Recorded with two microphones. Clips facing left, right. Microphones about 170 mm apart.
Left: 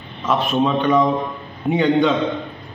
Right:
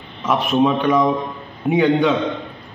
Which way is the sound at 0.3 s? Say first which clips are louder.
Right 2 dB; 10° right (ahead or behind).